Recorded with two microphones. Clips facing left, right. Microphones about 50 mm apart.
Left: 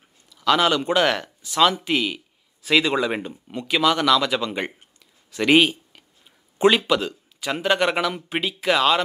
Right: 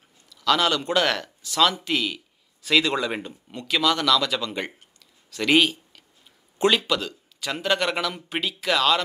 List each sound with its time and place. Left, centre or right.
0.3 s speech: centre